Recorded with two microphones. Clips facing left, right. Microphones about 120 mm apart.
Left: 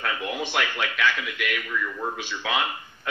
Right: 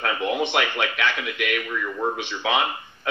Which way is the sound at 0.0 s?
50° right (ahead or behind).